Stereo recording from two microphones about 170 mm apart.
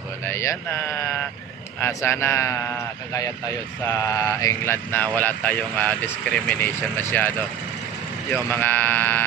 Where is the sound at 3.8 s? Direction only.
20° left (ahead or behind).